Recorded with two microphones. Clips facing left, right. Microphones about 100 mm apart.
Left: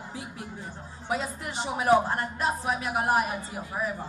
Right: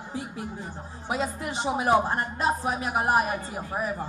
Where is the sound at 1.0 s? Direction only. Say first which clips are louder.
Right 2 dB; 20° right (ahead or behind).